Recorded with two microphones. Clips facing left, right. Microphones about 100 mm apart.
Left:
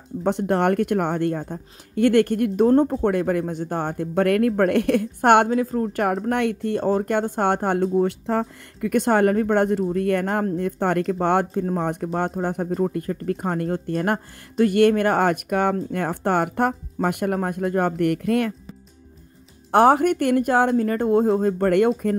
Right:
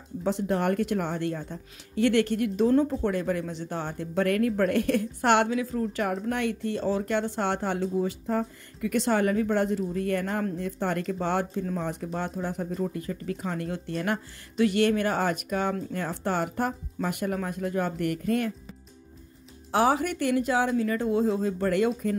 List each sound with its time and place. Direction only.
0.2 s a woman's voice: 60° left (ahead or behind)
19.7 s speech: 55° left (ahead or behind)